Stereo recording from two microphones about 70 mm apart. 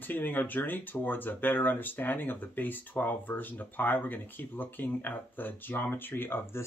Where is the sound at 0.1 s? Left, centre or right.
Left.